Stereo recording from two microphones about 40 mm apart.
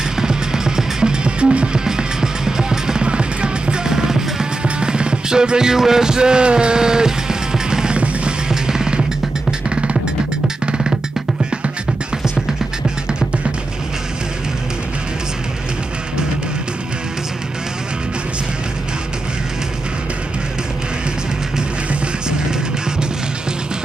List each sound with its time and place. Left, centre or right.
0.2 s music: centre
1.9 s music: centre
10.7 s music: centre